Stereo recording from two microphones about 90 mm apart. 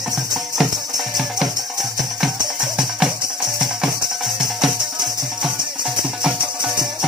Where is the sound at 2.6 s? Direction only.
5° right (ahead or behind).